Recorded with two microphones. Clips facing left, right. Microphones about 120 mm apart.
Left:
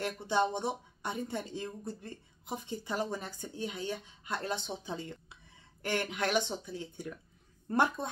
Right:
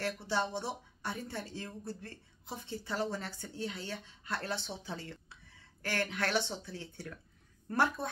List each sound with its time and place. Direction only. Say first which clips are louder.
0.0 s a woman's voice: left 4 dB; 20° left (ahead or behind)